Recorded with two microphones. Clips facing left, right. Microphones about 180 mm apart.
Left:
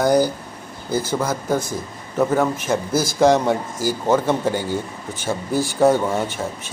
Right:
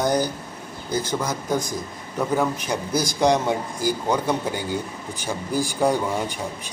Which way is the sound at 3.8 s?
45° left (ahead or behind).